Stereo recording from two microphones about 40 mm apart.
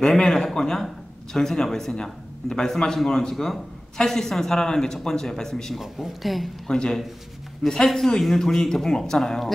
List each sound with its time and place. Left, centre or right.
0.0 s speech: centre
5.8 s speech: centre
6.7 s speech: centre